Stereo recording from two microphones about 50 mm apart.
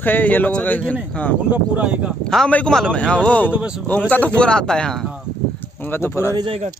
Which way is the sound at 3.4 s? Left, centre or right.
Right.